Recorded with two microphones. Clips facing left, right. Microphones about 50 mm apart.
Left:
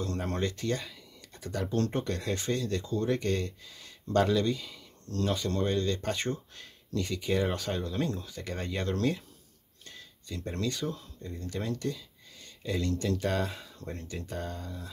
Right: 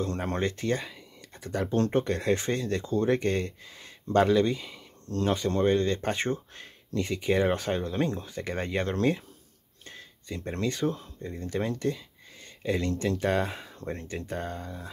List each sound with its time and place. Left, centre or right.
0.0 s speech: right